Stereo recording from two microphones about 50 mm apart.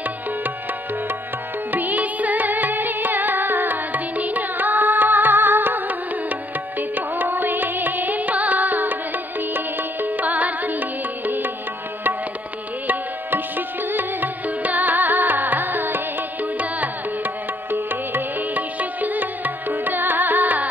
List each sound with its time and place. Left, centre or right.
1.7 s music: right
12.8 s music: right